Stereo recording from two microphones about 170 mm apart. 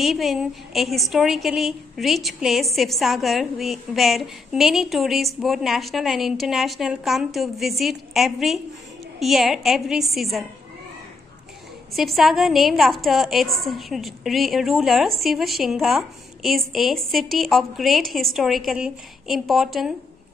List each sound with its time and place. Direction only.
0.0 s a woman's voice: centre (ahead or behind)
11.9 s a woman's voice: centre (ahead or behind)